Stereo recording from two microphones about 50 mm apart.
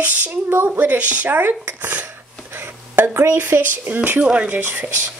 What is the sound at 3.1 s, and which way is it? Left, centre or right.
Speech, right.